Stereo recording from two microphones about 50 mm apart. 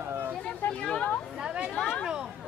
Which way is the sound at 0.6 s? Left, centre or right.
Left.